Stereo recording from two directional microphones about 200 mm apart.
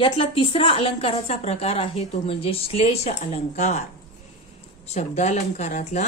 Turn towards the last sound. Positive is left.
turn(degrees=35)  # may be behind; listen again after turning